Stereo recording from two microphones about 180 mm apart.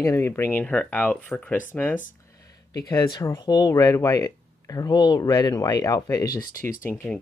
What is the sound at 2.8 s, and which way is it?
Speech, 25° left (ahead or behind).